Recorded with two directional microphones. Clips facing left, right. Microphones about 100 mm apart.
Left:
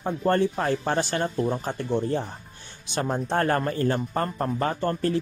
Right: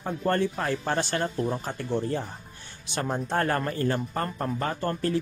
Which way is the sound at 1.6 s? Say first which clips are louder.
Left 3 dB; 20° left (ahead or behind).